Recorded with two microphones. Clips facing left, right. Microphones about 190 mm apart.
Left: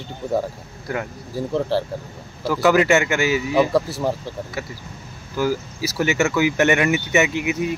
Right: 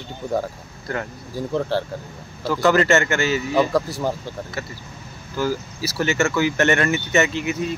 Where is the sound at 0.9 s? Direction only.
10° left (ahead or behind).